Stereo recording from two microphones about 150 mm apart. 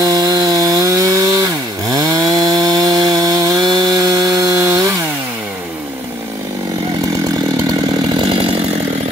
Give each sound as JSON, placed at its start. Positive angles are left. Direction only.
{"t": 0.0, "sound": "wood", "side_deg": -25}
{"t": 1.9, "sound": "chainsaw", "side_deg": -25}
{"t": 8.1, "sound": "chainsaw", "side_deg": -35}